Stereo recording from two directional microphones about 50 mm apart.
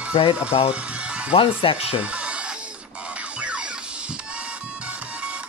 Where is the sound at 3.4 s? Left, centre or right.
Right.